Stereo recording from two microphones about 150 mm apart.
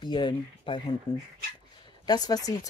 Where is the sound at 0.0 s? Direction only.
30° left (ahead or behind).